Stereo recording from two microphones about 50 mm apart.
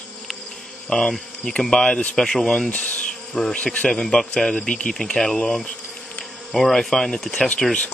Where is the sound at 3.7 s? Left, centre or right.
Centre.